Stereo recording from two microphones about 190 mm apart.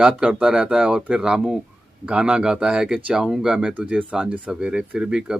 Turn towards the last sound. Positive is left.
turn(degrees=-5)  # may be behind; listen again after turning